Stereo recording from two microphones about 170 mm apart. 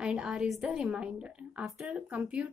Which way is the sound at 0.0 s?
5° right (ahead or behind).